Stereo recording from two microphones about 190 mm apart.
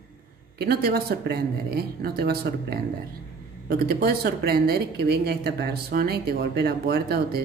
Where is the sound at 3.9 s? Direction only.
55° right (ahead or behind).